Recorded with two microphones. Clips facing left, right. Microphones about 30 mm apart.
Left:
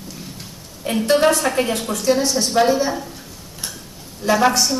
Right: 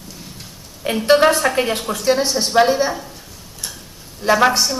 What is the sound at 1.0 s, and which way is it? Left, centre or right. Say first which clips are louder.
A woman's voice: right 3 dB; right.